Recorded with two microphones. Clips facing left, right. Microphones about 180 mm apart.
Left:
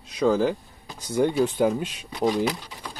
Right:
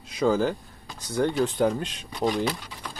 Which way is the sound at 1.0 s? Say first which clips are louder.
Left 2 dB; 10° left (ahead or behind).